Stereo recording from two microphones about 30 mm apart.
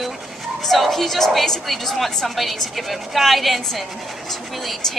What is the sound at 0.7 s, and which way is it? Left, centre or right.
Speech, centre.